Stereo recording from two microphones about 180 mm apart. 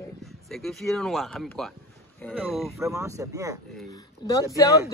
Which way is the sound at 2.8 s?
15° right (ahead or behind).